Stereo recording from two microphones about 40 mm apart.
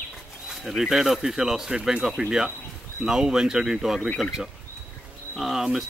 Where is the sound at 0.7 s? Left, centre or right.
Centre.